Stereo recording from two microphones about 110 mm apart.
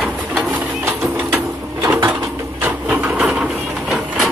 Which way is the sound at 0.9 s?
20° right (ahead or behind).